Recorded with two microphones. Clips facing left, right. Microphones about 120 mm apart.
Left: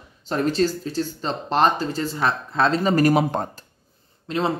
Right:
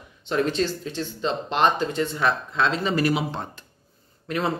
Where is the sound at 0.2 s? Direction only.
40° left (ahead or behind).